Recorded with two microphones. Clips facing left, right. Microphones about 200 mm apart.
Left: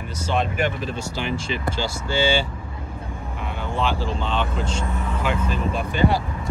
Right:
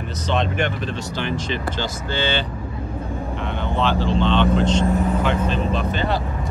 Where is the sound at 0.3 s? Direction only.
5° left (ahead or behind).